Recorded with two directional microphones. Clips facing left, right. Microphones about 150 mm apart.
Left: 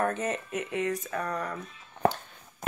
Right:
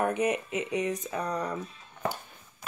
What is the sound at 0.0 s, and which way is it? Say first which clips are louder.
Speech: right 2 dB; 15° right (ahead or behind).